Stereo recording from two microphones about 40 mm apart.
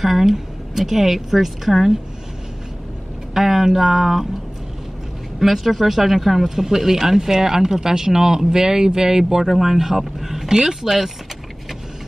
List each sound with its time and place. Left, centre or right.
0.0 s speech: centre
3.3 s speech: centre
5.4 s speech: centre